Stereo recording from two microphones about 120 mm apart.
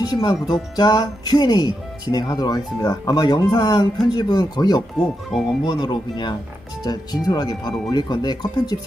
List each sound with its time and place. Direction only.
0.0 s speech: 35° left (ahead or behind)
5.3 s speech: centre (ahead or behind)
5.7 s speech: 35° left (ahead or behind)